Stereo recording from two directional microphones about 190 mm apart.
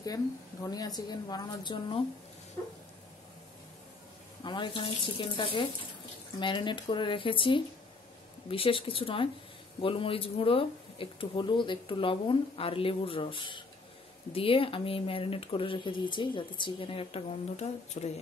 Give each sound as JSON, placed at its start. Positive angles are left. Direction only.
{"t": 0.0, "sound": "speech", "side_deg": 20}
{"t": 4.4, "sound": "speech", "side_deg": 25}